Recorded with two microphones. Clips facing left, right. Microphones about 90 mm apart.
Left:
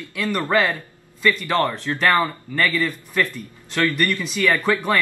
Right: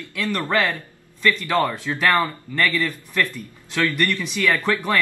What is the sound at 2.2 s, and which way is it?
A man's voice, 10° left (ahead or behind).